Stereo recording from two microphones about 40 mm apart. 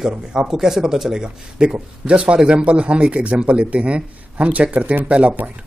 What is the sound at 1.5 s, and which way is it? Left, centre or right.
A man's voice, right.